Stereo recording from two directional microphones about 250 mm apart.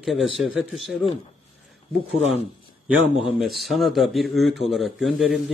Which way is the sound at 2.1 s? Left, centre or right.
Left.